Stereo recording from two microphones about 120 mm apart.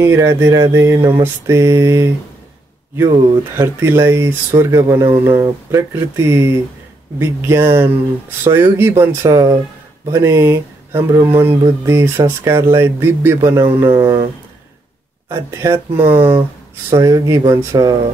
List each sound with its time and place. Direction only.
0.0 s speech: 25° right (ahead or behind)
3.5 s speech: 20° right (ahead or behind)
15.2 s speech: 25° right (ahead or behind)